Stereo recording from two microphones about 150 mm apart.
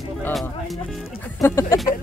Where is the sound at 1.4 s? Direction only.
20° left (ahead or behind).